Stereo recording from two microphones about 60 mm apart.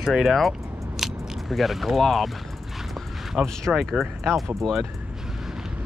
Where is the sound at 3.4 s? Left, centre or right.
Centre.